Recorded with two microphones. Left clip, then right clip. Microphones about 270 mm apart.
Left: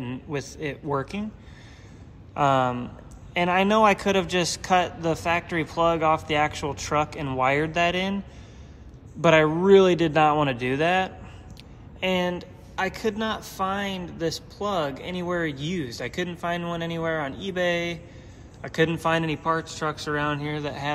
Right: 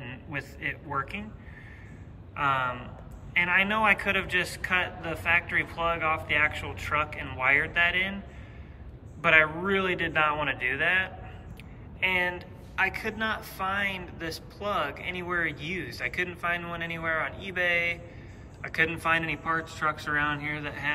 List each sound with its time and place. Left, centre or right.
0.0 s a man's voice: centre
2.3 s speech: centre
9.2 s speech: centre